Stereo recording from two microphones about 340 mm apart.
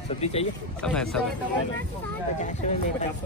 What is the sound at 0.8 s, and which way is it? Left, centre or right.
Speech, centre.